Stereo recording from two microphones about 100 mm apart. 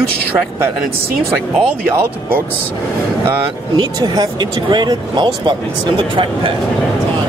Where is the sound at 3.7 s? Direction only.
45° right (ahead or behind).